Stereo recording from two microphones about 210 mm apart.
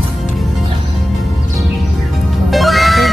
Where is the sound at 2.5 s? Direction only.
Centre (ahead or behind).